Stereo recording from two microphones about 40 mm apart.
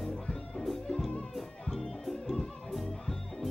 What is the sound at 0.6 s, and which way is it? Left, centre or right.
Music, centre.